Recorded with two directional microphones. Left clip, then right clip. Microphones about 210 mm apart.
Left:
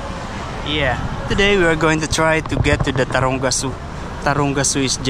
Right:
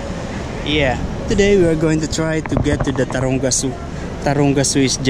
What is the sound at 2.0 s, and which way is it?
Speech, 50° left (ahead or behind).